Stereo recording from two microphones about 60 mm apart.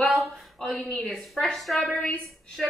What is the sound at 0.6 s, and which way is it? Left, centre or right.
A woman's voice, centre.